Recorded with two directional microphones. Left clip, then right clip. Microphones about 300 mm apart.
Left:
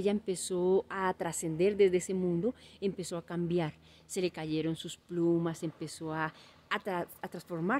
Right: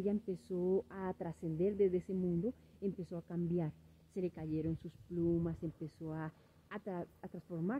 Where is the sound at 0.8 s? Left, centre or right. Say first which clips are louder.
Left 10 dB; centre.